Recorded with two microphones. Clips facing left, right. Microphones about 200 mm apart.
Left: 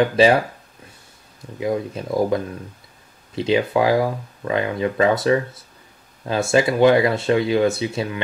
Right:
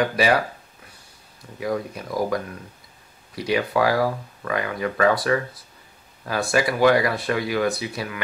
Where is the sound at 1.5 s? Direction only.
20° left (ahead or behind).